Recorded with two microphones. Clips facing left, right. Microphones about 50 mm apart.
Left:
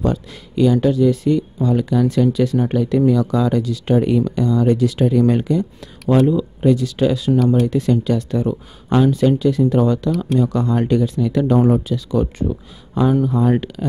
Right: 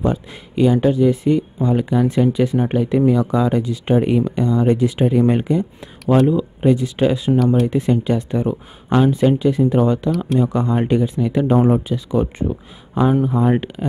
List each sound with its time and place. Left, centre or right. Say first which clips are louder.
0.0 s speech: even; centre
7.3 s speech: left 1 dB; centre
7.6 s speech: even; right